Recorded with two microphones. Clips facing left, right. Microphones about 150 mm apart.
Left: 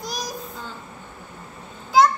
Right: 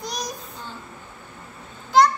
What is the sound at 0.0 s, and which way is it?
Child singing, centre (ahead or behind).